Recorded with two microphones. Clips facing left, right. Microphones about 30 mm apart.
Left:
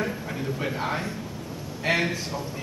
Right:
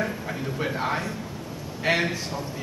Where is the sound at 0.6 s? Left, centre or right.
Centre.